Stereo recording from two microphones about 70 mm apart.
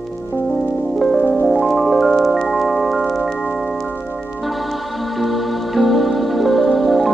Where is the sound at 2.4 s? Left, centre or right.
Centre.